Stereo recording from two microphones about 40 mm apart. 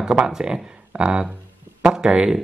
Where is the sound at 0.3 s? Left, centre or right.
Centre.